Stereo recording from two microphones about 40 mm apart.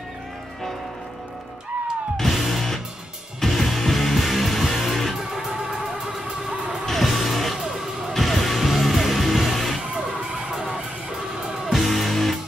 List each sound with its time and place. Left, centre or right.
2.1 s music: centre
5.3 s music: centre
6.9 s music: centre
7.5 s music: centre
8.1 s music: centre
9.9 s music: centre
11.6 s music: centre